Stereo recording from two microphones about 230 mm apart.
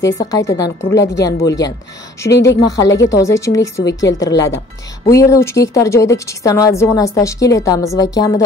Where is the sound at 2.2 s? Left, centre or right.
Left.